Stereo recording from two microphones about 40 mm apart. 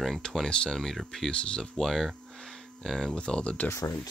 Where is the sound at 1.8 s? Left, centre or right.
Centre.